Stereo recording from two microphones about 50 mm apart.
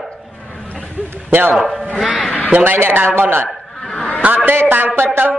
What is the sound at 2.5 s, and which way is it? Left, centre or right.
Speech, right.